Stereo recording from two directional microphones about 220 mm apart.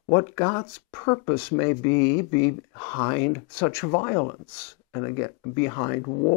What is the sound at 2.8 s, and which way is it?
Speech, 20° left (ahead or behind).